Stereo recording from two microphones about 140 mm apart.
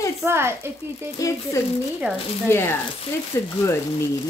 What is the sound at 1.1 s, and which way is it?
Speech, 25° left (ahead or behind).